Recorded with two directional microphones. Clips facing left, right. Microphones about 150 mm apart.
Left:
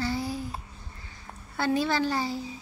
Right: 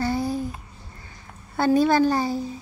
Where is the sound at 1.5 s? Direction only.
45° right (ahead or behind).